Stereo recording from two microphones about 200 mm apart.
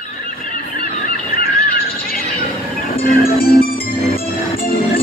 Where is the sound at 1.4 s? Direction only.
45° left (ahead or behind).